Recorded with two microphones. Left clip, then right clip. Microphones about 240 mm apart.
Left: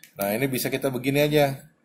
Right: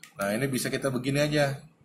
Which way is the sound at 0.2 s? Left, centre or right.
Centre.